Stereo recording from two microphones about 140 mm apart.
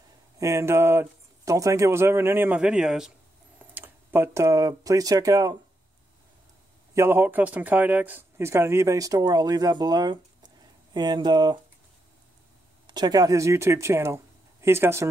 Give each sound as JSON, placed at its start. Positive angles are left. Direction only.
{"t": 0.4, "sound": "speech", "side_deg": -20}
{"t": 6.9, "sound": "speech", "side_deg": -15}
{"t": 12.8, "sound": "speech", "side_deg": -30}